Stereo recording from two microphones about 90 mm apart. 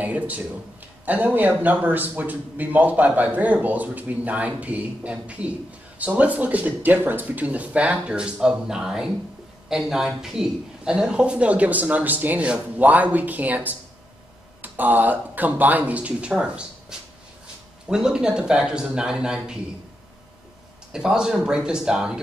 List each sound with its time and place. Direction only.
0.0 s a sound: 15° right (ahead or behind)
1.0 s a man's voice: 20° right (ahead or behind)
17.8 s speech: 5° right (ahead or behind)
20.9 s speech: 10° right (ahead or behind)